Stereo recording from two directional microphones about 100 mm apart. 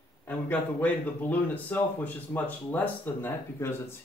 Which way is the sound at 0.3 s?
15° left (ahead or behind).